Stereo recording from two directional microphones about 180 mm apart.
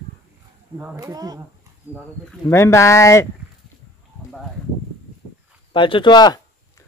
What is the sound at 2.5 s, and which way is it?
Speech, 15° left (ahead or behind).